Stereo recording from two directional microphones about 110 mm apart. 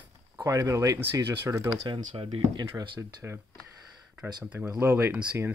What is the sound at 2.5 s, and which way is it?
Speech, 45° right (ahead or behind).